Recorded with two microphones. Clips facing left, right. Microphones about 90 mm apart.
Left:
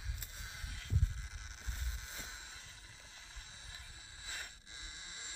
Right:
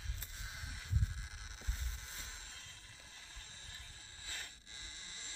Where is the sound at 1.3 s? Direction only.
Centre (ahead or behind).